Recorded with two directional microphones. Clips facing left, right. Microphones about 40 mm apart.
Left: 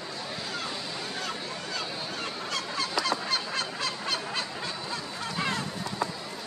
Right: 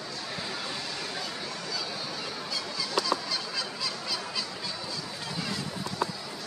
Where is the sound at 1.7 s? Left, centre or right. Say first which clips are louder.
Left 2 dB; left.